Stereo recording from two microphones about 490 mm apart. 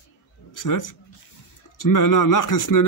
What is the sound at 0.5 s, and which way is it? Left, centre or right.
Speech, left.